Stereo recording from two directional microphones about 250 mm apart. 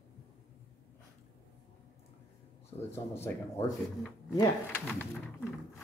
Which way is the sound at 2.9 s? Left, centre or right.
Centre.